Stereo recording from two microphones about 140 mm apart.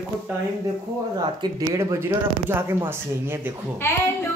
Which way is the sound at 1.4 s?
25° right (ahead or behind).